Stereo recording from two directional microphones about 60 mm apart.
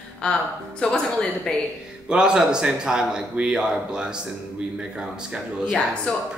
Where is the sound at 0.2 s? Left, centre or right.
Centre.